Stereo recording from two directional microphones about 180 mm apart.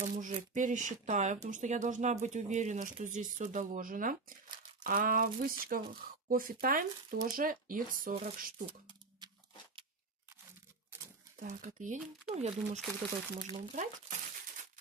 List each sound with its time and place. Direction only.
0.0 s speech: 45° right (ahead or behind)
8.6 s a sound: 25° right (ahead or behind)
11.3 s speech: 45° right (ahead or behind)